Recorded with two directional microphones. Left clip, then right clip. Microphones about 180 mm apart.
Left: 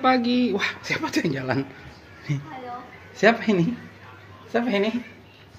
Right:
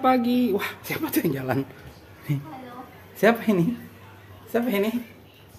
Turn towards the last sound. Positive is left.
turn(degrees=-5)  # may be behind; listen again after turning